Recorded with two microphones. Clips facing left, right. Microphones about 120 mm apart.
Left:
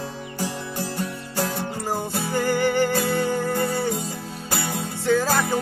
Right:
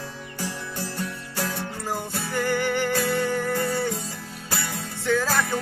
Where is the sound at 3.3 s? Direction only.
20° left (ahead or behind).